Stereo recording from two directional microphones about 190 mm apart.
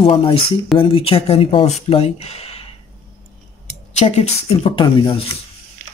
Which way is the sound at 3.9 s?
35° left (ahead or behind).